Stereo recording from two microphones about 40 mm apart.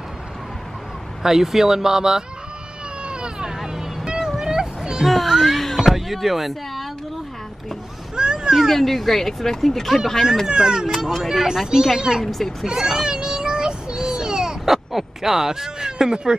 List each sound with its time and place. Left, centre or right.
1.2 s speech: centre
3.1 s vehicle: right
4.4 s a sound: centre
5.0 s children playing: centre
5.8 s a sound: centre
8.2 s speech: right
8.5 s speech: centre
10.5 s speech: centre
12.3 s speech: centre
12.6 s child singing: centre
14.6 s a sound: centre